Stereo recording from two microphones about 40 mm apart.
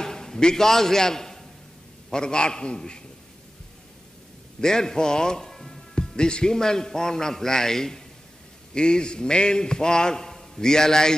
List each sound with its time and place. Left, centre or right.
0.0 s a sound: centre
2.0 s a man's voice: centre
4.6 s a man's voice: centre